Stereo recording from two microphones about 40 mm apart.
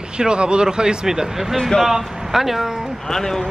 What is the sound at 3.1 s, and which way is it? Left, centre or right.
Speech, centre.